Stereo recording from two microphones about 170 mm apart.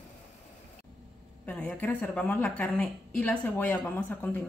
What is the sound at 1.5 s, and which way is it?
A woman's voice, 10° left (ahead or behind).